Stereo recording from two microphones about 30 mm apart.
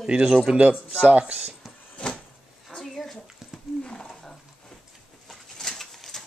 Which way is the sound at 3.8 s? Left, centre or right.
Left.